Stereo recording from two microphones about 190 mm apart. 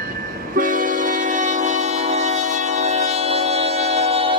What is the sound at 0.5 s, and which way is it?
Train, 45° right (ahead or behind).